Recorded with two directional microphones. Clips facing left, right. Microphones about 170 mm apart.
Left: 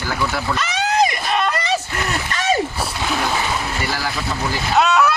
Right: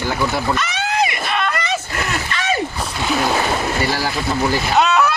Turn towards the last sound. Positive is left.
turn(degrees=5)  # may be behind; listen again after turning